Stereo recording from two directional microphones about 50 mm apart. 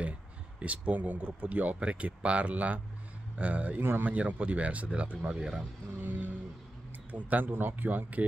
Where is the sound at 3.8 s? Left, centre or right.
Right.